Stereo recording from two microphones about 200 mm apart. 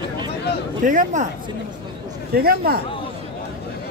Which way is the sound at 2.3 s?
50° right (ahead or behind).